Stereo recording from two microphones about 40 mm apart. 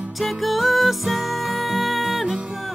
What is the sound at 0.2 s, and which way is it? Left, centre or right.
Music, centre.